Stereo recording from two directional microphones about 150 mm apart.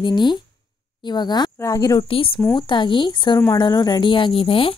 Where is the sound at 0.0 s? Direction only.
30° left (ahead or behind).